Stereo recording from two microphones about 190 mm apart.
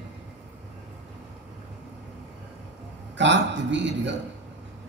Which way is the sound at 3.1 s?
70° right (ahead or behind).